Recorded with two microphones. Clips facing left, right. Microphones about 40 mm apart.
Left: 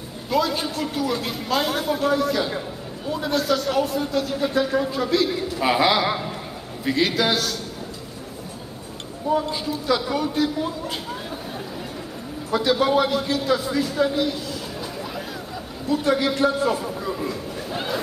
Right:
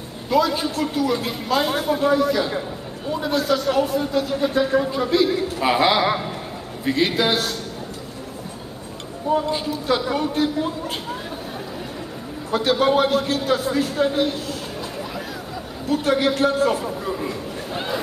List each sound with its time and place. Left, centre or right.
0.3 s a man's voice: centre
7.1 s a man's voice: centre
9.3 s a woman's voice: right
12.4 s a man's voice: right
15.9 s a man's voice: right
17.1 s chatter: centre